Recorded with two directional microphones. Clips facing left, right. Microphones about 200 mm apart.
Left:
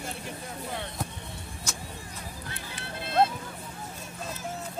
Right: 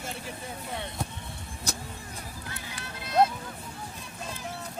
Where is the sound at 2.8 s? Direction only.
30° left (ahead or behind).